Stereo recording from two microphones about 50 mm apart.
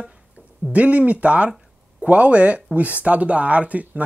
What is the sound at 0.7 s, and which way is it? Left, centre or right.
Speech, right.